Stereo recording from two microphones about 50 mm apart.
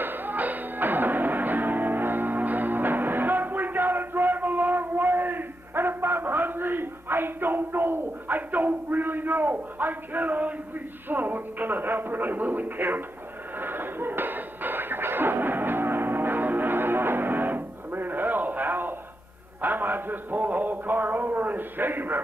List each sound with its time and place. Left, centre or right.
0.0 s music: right
11.1 s speech: right
13.6 s music: right
19.6 s a man's voice: right